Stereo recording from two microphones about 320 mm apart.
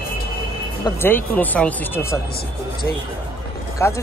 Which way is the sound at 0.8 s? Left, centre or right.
Centre.